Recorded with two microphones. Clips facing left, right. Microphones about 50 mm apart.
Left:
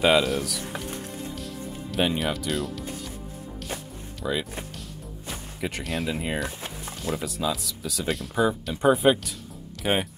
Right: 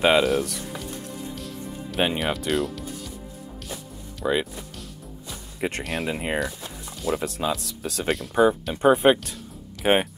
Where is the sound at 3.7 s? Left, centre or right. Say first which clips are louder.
Left 2 dB; left.